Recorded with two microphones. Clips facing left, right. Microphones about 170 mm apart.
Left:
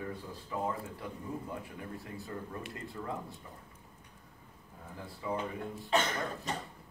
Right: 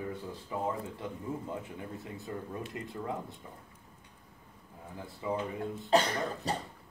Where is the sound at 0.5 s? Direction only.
20° right (ahead or behind).